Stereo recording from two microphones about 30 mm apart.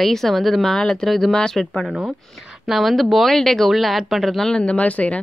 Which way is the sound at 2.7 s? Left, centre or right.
Centre.